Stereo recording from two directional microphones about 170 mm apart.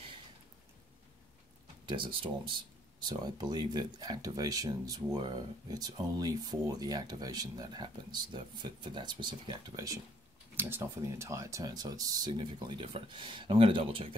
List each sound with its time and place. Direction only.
1.9 s speech: 30° right (ahead or behind)
10.5 s speech: 10° right (ahead or behind); by 14.1 s 30° right (ahead or behind)